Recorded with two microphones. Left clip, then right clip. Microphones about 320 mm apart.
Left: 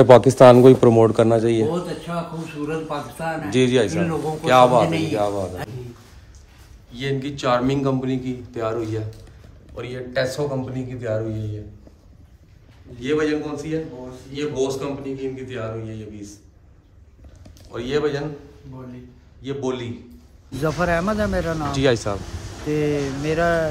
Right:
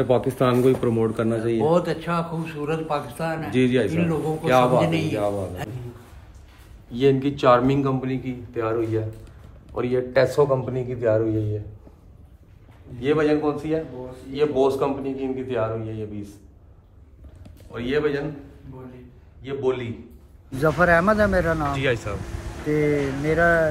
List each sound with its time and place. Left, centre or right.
0.2 s a man's voice: centre
2.6 s a man's voice: centre
3.4 s a man's voice: centre
6.9 s a man's voice: centre
9.8 s a man's voice: centre
13.0 s a man's voice: centre
17.7 s a man's voice: centre
19.4 s a man's voice: centre